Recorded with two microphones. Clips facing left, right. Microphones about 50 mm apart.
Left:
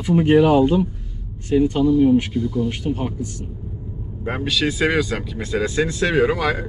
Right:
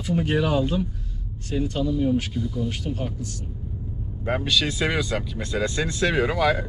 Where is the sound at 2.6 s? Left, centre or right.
Left.